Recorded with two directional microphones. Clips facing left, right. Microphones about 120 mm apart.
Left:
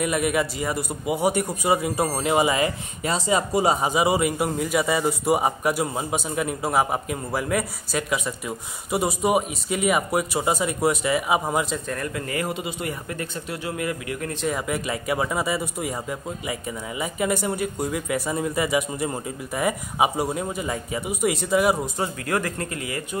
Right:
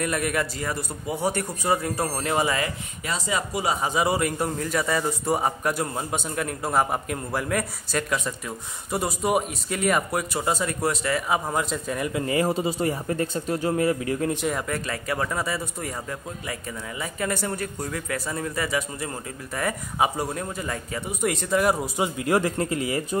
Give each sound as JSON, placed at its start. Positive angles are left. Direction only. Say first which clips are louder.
{"t": 0.0, "sound": "a man's voice", "louder": "left 3 dB", "side_deg": 10}
{"t": 3.8, "sound": "a man's voice", "louder": "left 2 dB", "side_deg": 10}
{"t": 11.7, "sound": "speech", "louder": "right 1 dB", "side_deg": -5}
{"t": 12.1, "sound": "a man's voice", "louder": "right 7 dB", "side_deg": -25}
{"t": 12.4, "sound": "a man's voice", "louder": "right 5 dB", "side_deg": -35}
{"t": 14.5, "sound": "a man's voice", "louder": "left 2 dB", "side_deg": 10}
{"t": 21.8, "sound": "a man's voice", "louder": "right 1 dB", "side_deg": -10}
{"t": 22.2, "sound": "a man's voice", "louder": "right 6 dB", "side_deg": -25}